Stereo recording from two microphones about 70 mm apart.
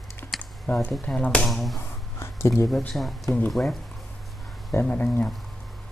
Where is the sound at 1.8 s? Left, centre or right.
Left.